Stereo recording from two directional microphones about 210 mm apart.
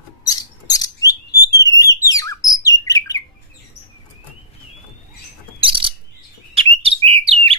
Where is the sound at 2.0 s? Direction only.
15° left (ahead or behind).